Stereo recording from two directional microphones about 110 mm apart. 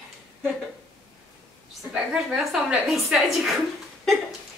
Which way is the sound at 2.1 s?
5° right (ahead or behind).